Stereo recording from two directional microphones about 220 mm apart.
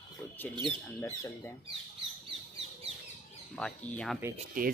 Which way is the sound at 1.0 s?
10° left (ahead or behind).